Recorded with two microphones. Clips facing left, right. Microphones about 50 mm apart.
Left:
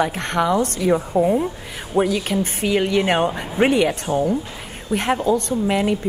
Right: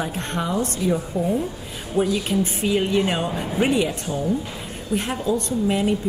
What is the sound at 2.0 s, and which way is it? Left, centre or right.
Speech, left.